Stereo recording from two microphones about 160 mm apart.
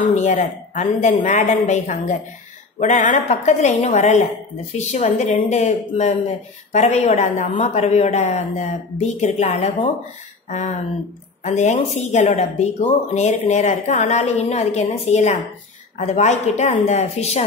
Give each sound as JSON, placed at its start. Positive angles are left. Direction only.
{"t": 0.1, "sound": "speech", "side_deg": 50}